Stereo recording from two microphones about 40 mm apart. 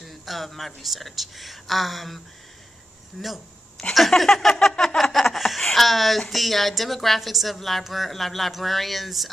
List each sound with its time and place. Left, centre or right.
0.0 s speech: centre
3.2 s a sound: centre
4.2 s chuckle: centre
5.6 s speech: centre